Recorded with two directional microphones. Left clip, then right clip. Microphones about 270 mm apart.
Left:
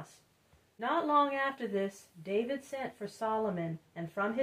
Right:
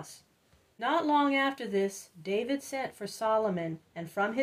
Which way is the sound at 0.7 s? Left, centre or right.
Right.